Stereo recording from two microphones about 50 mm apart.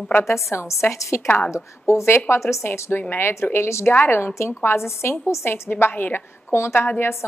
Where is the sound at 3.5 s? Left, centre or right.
Left.